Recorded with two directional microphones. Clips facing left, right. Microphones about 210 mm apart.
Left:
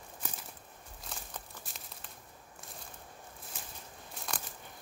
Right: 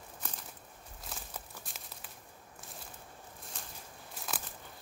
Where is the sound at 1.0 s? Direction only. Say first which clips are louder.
Even; centre (ahead or behind).